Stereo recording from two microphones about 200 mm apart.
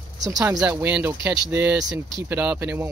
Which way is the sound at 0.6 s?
10° right (ahead or behind).